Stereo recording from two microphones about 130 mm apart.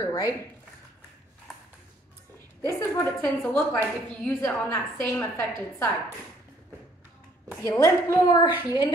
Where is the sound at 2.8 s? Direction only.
20° left (ahead or behind).